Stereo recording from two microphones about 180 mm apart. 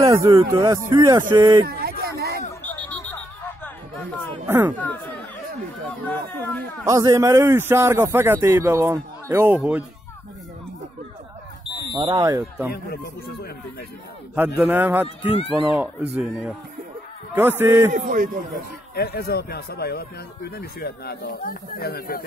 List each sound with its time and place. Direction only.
0.0 s a man's voice: 20° right (ahead or behind)
1.7 s a sound: 60° right (ahead or behind)
2.6 s hubbub: 10° left (ahead or behind)
4.5 s a man's voice: 10° right (ahead or behind)
4.7 s speech: 10° left (ahead or behind)
6.9 s a man's voice: 20° right (ahead or behind)
12.0 s speech: 25° right (ahead or behind)
12.7 s speech: 60° left (ahead or behind)
14.3 s a man's voice: 10° right (ahead or behind)
15.0 s speech: 30° left (ahead or behind)
15.7 s a man's voice: 5° right (ahead or behind)
17.9 s a man's voice: 45° right (ahead or behind)
18.9 s speech: 60° left (ahead or behind)